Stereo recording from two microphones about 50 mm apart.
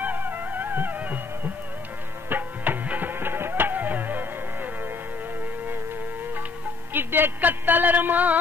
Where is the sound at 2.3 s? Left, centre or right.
Right.